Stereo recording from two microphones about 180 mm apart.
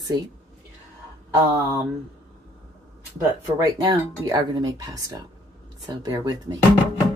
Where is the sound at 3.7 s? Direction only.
20° right (ahead or behind).